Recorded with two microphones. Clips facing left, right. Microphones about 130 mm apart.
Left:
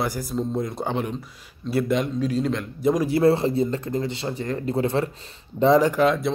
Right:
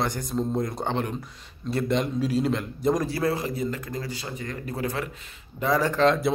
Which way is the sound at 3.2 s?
30° left (ahead or behind).